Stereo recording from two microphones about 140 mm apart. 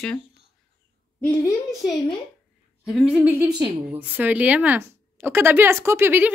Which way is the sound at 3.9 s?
10° right (ahead or behind).